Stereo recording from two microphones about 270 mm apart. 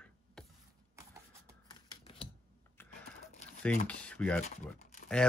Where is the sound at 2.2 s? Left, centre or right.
Centre.